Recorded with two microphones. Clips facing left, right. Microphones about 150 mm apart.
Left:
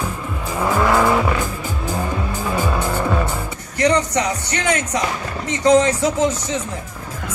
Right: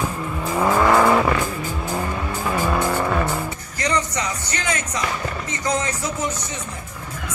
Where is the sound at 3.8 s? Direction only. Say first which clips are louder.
Left 7 dB; 65° left (ahead or behind).